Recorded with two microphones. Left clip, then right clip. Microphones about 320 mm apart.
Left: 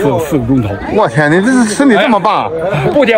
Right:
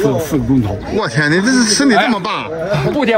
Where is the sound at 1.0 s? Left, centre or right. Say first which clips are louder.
Left 5 dB; centre.